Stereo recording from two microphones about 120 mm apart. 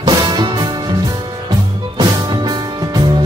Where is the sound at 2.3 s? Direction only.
35° right (ahead or behind).